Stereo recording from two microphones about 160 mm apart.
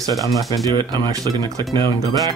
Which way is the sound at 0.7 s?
25° right (ahead or behind).